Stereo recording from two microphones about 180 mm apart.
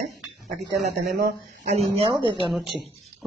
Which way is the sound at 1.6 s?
35° right (ahead or behind).